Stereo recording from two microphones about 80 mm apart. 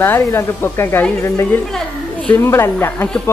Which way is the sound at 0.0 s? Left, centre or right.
Left.